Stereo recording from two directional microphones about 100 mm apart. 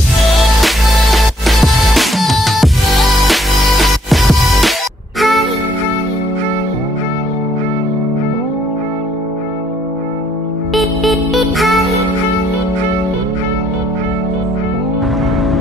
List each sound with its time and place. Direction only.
0.6 s music: centre (ahead or behind)
10.7 s music: centre (ahead or behind)